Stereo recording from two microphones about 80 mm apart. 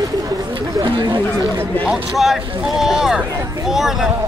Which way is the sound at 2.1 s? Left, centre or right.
Centre.